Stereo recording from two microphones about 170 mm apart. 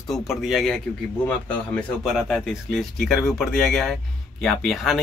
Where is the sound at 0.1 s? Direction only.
Centre (ahead or behind).